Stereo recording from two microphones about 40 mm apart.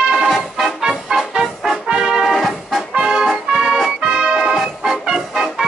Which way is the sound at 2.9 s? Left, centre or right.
Right.